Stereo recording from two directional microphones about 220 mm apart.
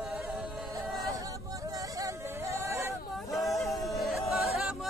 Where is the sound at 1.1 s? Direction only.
15° right (ahead or behind).